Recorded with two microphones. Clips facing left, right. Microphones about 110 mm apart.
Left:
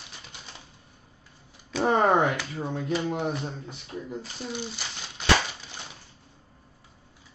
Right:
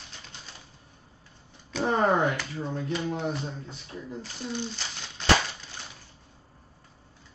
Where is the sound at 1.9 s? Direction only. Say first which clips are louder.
Left 2 dB; 20° left (ahead or behind).